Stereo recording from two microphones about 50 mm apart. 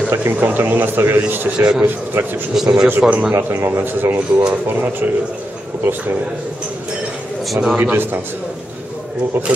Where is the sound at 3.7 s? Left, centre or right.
Right.